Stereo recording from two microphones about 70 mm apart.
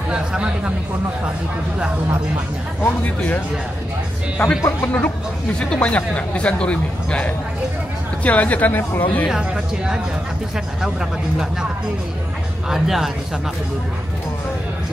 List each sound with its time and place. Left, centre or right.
0.1 s speech: centre
4.4 s speech: left
5.6 s a man's voice: centre
9.3 s speech: centre
12.6 s speech: centre